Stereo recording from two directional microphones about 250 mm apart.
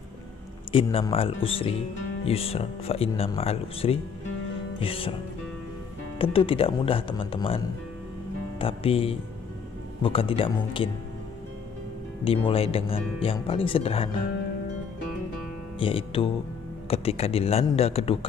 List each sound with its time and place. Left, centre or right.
0.7 s speech: left
6.1 s speech: left
12.3 s speech: left
15.8 s speech: left